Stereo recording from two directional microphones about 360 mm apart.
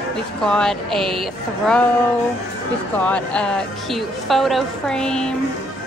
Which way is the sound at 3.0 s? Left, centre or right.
Centre.